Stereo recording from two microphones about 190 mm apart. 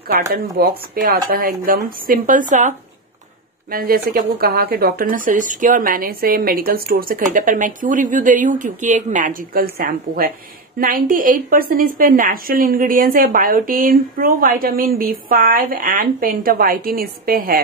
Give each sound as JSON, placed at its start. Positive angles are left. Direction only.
{"t": 0.6, "sound": "a woman's voice", "side_deg": -50}
{"t": 3.7, "sound": "a woman's voice", "side_deg": -50}